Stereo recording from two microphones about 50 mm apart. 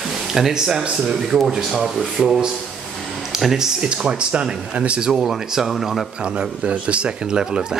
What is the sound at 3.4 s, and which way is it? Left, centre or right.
Speech, centre.